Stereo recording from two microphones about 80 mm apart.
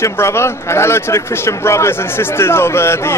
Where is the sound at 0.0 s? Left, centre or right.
Left.